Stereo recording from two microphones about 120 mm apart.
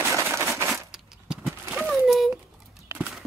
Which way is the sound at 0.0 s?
20° right (ahead or behind).